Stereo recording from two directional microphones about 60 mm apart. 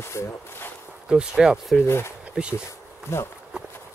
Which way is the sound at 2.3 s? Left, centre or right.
Centre.